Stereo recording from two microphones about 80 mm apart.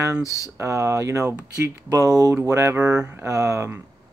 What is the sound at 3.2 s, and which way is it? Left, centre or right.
Speech, right.